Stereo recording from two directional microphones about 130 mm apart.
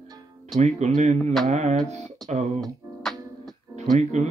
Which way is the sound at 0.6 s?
65° right (ahead or behind).